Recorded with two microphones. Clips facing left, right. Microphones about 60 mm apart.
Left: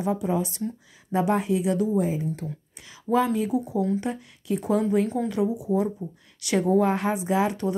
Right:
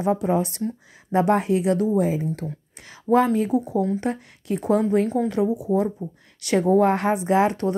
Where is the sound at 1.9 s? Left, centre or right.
Right.